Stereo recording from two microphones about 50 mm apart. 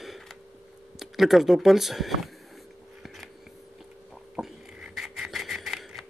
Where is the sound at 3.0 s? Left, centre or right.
Centre.